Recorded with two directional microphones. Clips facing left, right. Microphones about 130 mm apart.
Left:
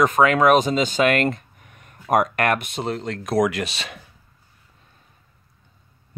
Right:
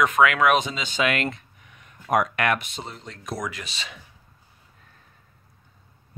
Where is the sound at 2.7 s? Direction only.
75° left (ahead or behind).